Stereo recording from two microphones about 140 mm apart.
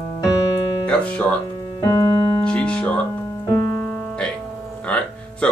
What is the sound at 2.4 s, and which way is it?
Music, 5° left (ahead or behind).